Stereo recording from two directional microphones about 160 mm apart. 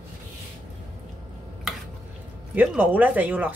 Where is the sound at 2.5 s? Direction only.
10° right (ahead or behind).